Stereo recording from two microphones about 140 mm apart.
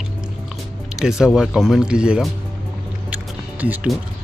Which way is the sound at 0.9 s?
5° right (ahead or behind).